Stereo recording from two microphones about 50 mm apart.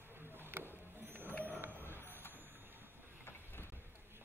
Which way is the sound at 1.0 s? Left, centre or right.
Right.